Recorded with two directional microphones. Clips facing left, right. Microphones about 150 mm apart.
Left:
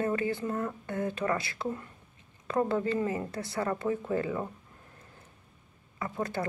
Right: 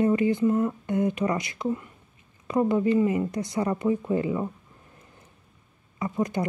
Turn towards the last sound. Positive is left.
turn(degrees=-15)  # may be behind; listen again after turning